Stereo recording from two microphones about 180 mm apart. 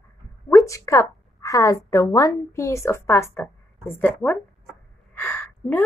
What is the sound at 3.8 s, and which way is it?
Speech, centre (ahead or behind).